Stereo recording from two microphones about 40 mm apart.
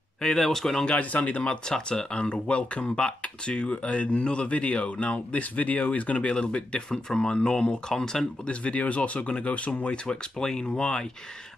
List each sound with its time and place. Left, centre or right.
0.2 s speech: centre
0.8 s speech: left
1.7 s speech: left
8.5 s speech: left